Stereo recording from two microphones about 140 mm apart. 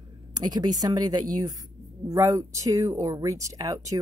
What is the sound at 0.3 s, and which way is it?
Speech, 30° right (ahead or behind).